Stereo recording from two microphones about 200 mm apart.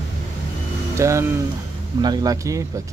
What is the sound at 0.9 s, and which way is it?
Speech, 15° right (ahead or behind).